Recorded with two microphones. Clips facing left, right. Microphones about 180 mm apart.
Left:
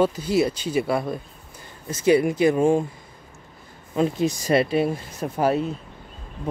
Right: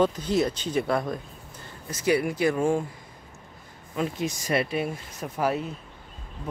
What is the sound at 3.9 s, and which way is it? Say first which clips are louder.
Speech: left 7 dB; 30° left (ahead or behind).